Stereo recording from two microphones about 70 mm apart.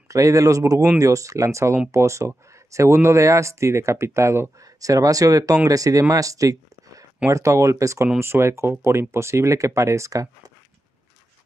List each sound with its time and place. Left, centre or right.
0.1 s speech: right
4.6 s speech: right
7.2 s speech: right
8.2 s speech: right